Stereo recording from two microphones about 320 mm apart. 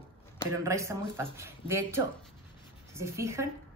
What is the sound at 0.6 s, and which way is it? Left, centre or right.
Speech, centre.